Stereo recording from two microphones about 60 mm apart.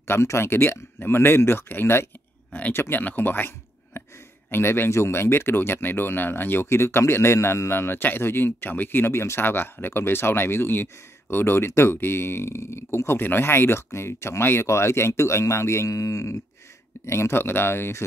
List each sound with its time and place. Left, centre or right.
0.0 s speech: left
3.0 s speech: left
17.0 s speech: left